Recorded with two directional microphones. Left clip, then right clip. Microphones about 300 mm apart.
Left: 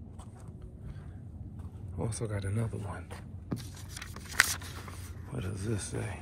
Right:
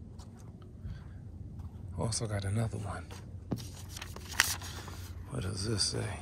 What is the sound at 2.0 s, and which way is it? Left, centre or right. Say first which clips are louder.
Speech: right 1 dB; centre.